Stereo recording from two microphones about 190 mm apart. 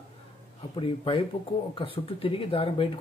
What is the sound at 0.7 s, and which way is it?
Speech, 30° left (ahead or behind).